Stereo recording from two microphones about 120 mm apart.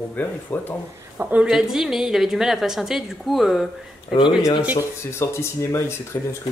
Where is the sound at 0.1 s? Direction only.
15° left (ahead or behind).